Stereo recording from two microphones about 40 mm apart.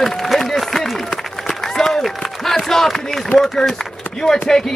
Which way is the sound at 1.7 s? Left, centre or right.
Centre.